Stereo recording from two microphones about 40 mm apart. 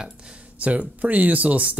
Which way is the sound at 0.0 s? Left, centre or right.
Right.